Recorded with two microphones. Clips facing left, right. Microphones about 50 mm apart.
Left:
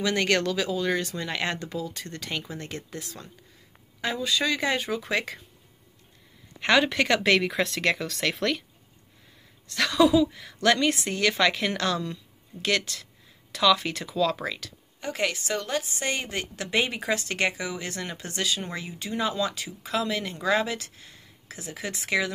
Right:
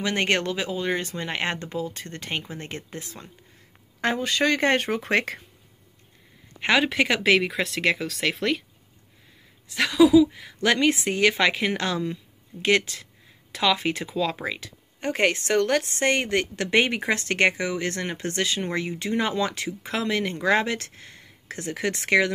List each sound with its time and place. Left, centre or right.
0.0 s speech: right
4.0 s speech: right
6.8 s speech: centre
9.7 s speech: centre
10.3 s a woman's voice: right
15.0 s speech: right